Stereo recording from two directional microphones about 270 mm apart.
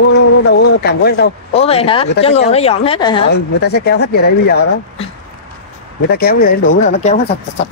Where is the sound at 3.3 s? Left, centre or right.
Left.